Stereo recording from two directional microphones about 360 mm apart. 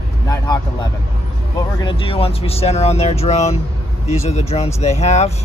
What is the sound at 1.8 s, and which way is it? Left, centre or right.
Speech, centre.